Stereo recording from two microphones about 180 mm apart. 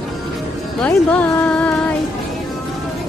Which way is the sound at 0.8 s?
5° left (ahead or behind).